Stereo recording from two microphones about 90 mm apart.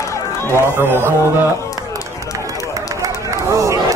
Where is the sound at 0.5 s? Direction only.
25° right (ahead or behind).